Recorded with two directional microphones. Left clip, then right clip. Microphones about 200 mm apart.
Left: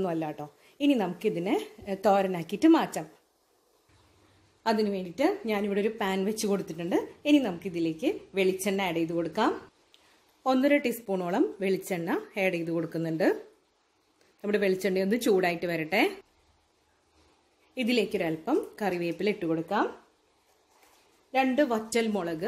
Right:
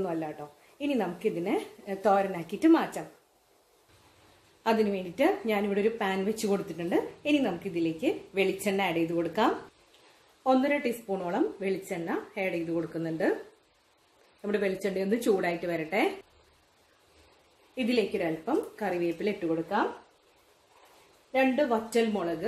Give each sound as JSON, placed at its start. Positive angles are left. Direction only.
{"t": 0.0, "sound": "a woman's voice", "side_deg": 45}
{"t": 4.6, "sound": "a woman's voice", "side_deg": 30}
{"t": 10.4, "sound": "a woman's voice", "side_deg": 50}
{"t": 14.4, "sound": "a woman's voice", "side_deg": 45}
{"t": 17.7, "sound": "a woman's voice", "side_deg": 50}
{"t": 21.3, "sound": "a woman's voice", "side_deg": 55}